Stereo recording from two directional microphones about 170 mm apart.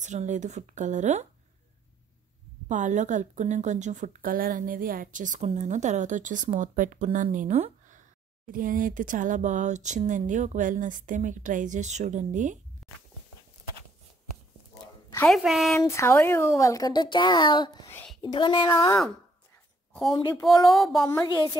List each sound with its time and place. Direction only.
0.0 s a woman's voice: 45° right (ahead or behind)
2.7 s a woman's voice: 45° right (ahead or behind)
12.8 s a sound: centre (ahead or behind)
15.2 s a woman's voice: centre (ahead or behind)
15.7 s a woman's voice: 15° left (ahead or behind)
17.8 s a sound: 10° left (ahead or behind)
18.2 s a woman's voice: 25° left (ahead or behind)
20.1 s a woman's voice: 25° left (ahead or behind)
20.6 s a woman's voice: centre (ahead or behind)